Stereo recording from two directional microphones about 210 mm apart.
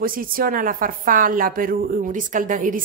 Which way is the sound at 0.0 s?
40° right (ahead or behind).